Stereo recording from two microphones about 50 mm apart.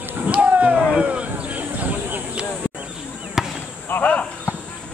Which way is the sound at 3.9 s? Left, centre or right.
Left.